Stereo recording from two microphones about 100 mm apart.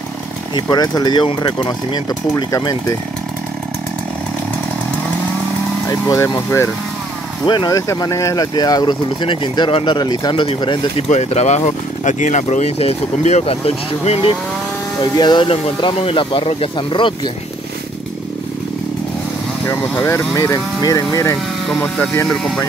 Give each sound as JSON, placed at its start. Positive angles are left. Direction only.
{"t": 0.6, "sound": "speech", "side_deg": 45}
{"t": 5.9, "sound": "speech", "side_deg": 30}
{"t": 7.4, "sound": "speech", "side_deg": 45}
{"t": 7.9, "sound": "speech", "side_deg": 30}
{"t": 9.9, "sound": "speech", "side_deg": 45}
{"t": 11.0, "sound": "speech", "side_deg": 85}
{"t": 15.1, "sound": "speech", "side_deg": 50}
{"t": 16.0, "sound": "speech", "side_deg": 65}
{"t": 19.8, "sound": "speech", "side_deg": 5}
{"t": 20.1, "sound": "speech", "side_deg": 30}
{"t": 21.6, "sound": "speech", "side_deg": 5}